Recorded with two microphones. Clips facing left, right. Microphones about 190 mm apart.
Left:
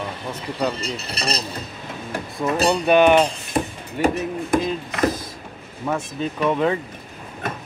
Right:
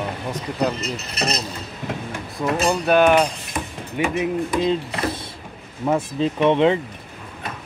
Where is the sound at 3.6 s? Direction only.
35° left (ahead or behind).